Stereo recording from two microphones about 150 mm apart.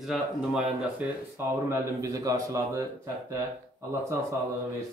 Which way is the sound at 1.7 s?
20° right (ahead or behind).